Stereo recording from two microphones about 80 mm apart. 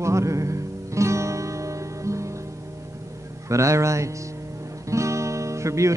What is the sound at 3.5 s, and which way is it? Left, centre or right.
Speech, right.